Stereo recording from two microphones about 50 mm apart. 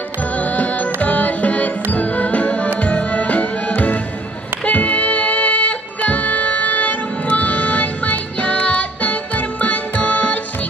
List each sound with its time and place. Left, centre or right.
0.4 s music: left